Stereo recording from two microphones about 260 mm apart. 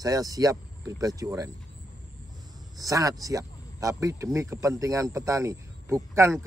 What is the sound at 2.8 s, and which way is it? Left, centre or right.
Speech, centre.